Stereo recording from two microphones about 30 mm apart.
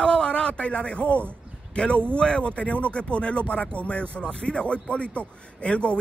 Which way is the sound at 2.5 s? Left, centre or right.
Left.